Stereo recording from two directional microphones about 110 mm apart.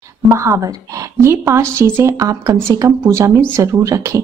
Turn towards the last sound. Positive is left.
turn(degrees=-30)  # may be behind; listen again after turning